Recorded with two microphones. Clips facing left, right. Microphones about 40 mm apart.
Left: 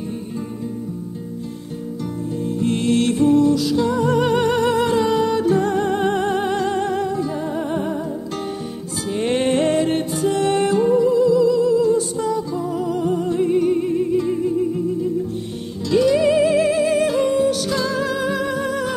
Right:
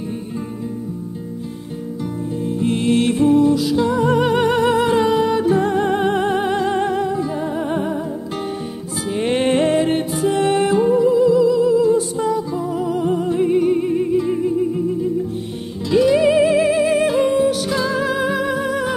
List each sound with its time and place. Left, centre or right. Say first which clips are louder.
2.4 s music: right 1 dB; centre
9.1 s music: right 1 dB; centre
15.9 s music: right 2 dB; centre